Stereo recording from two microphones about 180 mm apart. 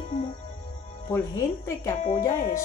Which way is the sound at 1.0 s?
15° left (ahead or behind).